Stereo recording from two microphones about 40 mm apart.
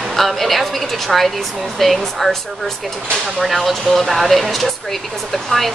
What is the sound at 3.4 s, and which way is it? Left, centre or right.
Speech, centre.